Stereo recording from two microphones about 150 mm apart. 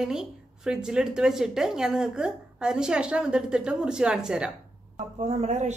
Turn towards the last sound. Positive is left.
turn(degrees=-50)  # may be behind; listen again after turning